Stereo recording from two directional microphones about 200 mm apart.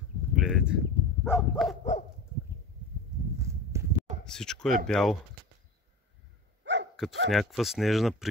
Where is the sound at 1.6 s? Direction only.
Centre (ahead or behind).